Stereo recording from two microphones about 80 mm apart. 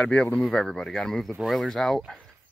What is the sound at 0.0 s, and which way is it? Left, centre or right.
Speech, centre.